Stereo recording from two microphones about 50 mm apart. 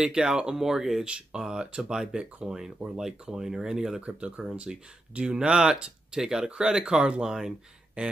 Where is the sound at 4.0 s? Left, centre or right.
Right.